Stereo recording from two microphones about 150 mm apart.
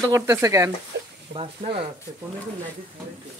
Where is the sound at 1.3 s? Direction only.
40° right (ahead or behind).